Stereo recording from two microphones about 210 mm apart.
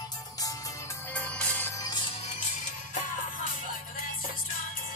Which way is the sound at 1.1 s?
5° left (ahead or behind).